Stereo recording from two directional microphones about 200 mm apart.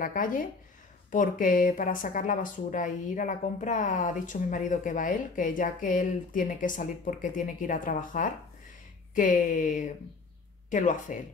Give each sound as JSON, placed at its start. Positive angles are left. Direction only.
{"t": 0.0, "sound": "speech", "side_deg": 40}